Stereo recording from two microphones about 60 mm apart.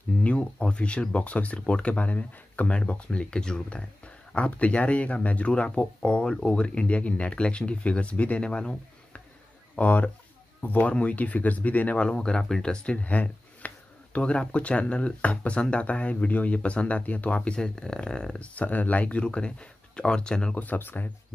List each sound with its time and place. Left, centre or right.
0.2 s speech: centre
12.1 s speech: centre
17.6 s speech: centre
20.5 s speech: left